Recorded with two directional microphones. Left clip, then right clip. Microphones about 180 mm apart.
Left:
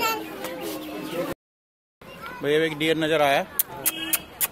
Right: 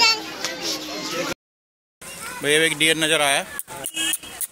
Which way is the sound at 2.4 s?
10° right (ahead or behind).